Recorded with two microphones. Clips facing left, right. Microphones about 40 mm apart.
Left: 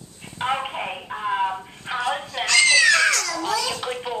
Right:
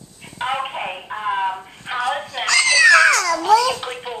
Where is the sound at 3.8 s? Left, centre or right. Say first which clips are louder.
Even; centre.